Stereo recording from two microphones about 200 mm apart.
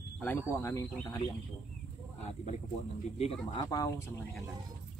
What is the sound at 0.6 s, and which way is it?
Speech, 15° left (ahead or behind).